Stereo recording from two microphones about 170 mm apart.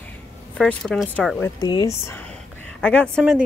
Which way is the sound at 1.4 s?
20° left (ahead or behind).